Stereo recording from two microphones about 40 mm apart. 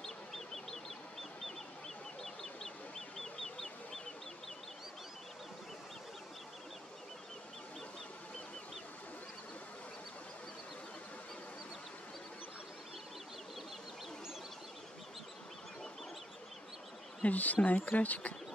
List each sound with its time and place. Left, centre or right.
0.0 s bird: centre
2.2 s bird: centre
3.2 s chicken: centre
17.2 s speech: left